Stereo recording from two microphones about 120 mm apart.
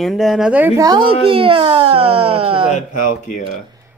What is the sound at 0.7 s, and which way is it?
Speech, 30° right (ahead or behind).